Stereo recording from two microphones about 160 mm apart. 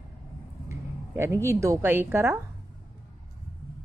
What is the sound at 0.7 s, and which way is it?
Speech, 15° right (ahead or behind).